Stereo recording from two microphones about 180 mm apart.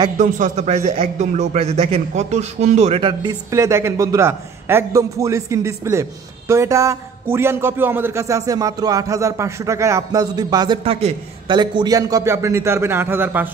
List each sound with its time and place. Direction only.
0.2 s a man's voice: 40° right (ahead or behind); by 13.5 s 10° right (ahead or behind)